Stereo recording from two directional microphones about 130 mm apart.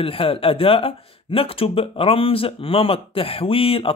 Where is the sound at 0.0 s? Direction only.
45° left (ahead or behind).